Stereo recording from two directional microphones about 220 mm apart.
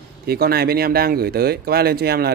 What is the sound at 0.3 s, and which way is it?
Speech, 45° right (ahead or behind).